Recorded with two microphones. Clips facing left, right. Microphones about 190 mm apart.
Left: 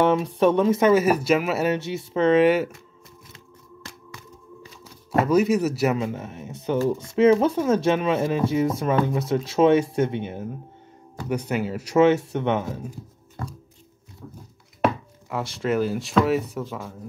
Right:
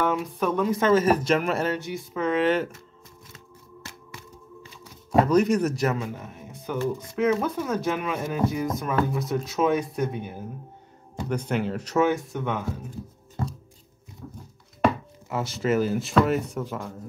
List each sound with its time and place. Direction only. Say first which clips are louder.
0.0 s speech: left 6 dB; 30° left (ahead or behind); by 1.7 s 5° left (ahead or behind)
1.7 s speech: left 4 dB; 25° left (ahead or behind)
2.4 s speech: left 4 dB; 10° left (ahead or behind)
5.1 s speech: even; 5° left (ahead or behind)
5.9 s speech: left 5 dB; 25° left (ahead or behind)
10.1 s speech: left 5 dB; 90° left
11.2 s speech: left 1 dB; 10° left (ahead or behind)
12.3 s speech: left 6 dB; 25° left (ahead or behind)
15.2 s speech: even; centre (ahead or behind)